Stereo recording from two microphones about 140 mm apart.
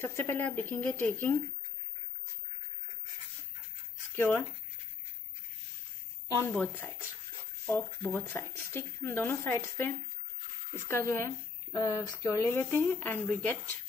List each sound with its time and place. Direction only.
0.0 s speech: 15° left (ahead or behind)
4.1 s speech: 15° left (ahead or behind)
6.5 s speech: 15° left (ahead or behind)